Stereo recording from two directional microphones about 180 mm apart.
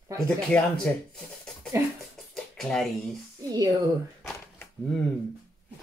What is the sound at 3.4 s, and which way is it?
Speech, 20° right (ahead or behind).